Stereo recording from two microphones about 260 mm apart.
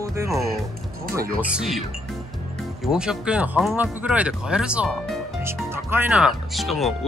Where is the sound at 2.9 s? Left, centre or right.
Centre.